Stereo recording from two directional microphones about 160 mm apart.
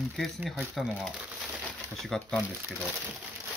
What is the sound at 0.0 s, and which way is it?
Speech, centre (ahead or behind).